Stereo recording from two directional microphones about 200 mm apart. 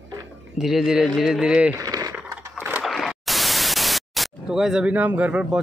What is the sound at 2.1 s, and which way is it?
Static, 5° right (ahead or behind).